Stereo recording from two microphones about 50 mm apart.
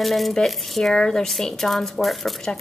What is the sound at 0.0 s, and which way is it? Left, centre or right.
A woman's voice, centre.